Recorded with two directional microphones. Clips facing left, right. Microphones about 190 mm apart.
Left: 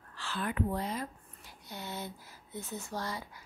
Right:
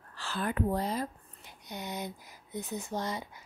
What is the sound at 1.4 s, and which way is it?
Speech, 20° right (ahead or behind).